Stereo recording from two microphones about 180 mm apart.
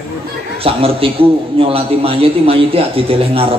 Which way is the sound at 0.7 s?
30° right (ahead or behind).